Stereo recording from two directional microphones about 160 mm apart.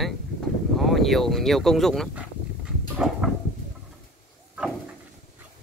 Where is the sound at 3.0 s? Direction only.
5° right (ahead or behind).